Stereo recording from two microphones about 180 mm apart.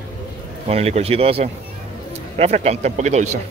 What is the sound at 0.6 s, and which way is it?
Speech, 35° right (ahead or behind).